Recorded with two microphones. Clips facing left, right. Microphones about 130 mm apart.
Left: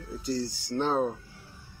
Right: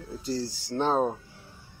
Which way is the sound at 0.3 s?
30° right (ahead or behind).